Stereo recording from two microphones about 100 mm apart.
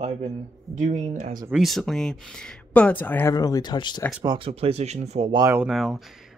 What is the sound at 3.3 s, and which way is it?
Speech, 35° left (ahead or behind).